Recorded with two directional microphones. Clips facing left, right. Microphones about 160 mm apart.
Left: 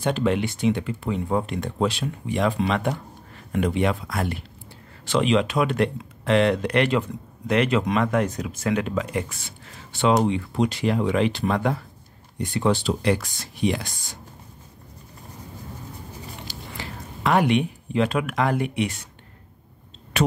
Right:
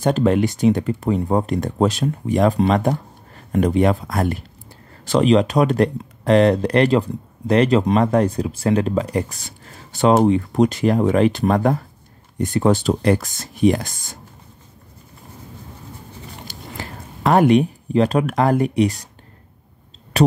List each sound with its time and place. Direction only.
0.0 s speech: 40° right (ahead or behind)
16.4 s speech: 45° right (ahead or behind)
20.1 s speech: 35° right (ahead or behind)